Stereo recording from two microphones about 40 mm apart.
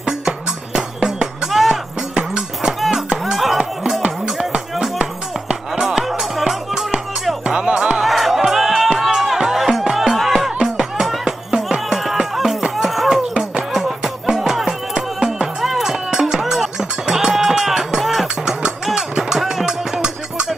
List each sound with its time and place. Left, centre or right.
0.7 s music: centre
1.7 s a sound: centre
3.3 s music: centre
5.5 s music: centre
7.4 s music: right
8.0 s music: centre
10.6 s music: centre
12.7 s a sound: centre
13.7 s music: centre